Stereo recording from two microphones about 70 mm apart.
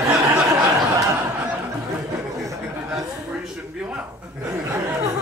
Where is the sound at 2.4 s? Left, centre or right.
Right.